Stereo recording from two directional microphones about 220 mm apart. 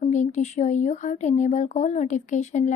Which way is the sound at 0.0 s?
30° left (ahead or behind).